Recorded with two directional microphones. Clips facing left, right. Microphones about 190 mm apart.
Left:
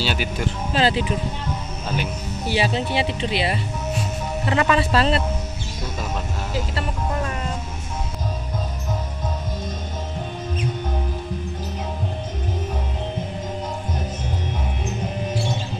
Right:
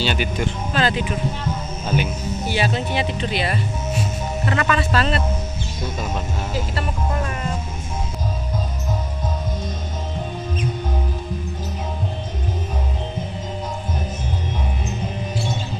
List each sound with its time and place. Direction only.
0.0 s speech: 5° left (ahead or behind)
0.7 s speech: 30° left (ahead or behind)
1.9 s speech: 5° right (ahead or behind)
2.4 s speech: 30° left (ahead or behind)